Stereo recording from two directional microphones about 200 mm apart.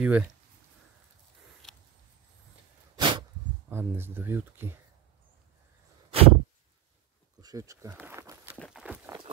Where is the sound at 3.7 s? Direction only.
10° right (ahead or behind).